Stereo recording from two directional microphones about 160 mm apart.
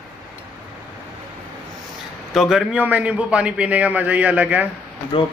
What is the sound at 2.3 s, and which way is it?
A man's voice, centre (ahead or behind).